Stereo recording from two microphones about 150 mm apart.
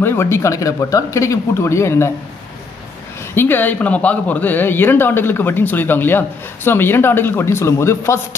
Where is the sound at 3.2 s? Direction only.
15° left (ahead or behind).